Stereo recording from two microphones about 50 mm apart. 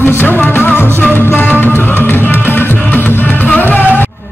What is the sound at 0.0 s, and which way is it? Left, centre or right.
Music, left.